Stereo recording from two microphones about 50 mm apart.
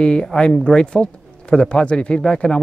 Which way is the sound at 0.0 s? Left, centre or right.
Centre.